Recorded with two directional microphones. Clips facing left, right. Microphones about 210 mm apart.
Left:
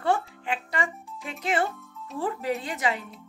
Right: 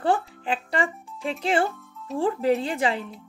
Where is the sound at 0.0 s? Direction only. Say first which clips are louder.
Right 2 dB; 30° right (ahead or behind).